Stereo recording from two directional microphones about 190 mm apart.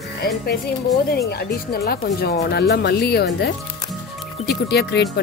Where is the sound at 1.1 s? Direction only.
55° left (ahead or behind).